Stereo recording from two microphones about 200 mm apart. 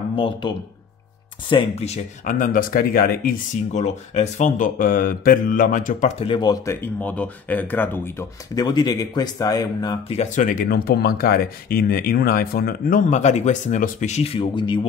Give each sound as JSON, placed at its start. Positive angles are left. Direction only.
{"t": 0.1, "sound": "speech", "side_deg": 25}
{"t": 3.7, "sound": "speech", "side_deg": 35}
{"t": 10.1, "sound": "speech", "side_deg": 40}